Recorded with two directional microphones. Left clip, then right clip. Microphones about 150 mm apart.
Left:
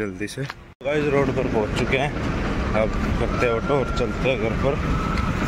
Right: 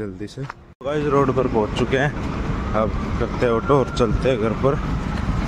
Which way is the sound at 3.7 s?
55° right (ahead or behind).